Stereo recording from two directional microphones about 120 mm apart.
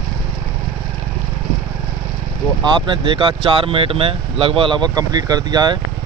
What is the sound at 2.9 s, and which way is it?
Speech, 45° right (ahead or behind).